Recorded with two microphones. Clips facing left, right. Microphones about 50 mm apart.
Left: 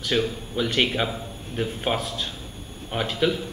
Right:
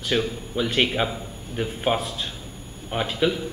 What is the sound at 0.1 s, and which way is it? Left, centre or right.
A man's voice, centre.